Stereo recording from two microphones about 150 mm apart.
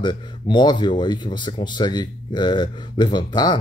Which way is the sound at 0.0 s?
30° left (ahead or behind).